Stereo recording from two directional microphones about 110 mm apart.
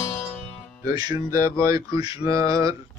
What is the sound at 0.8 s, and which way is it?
Mantra, 30° right (ahead or behind).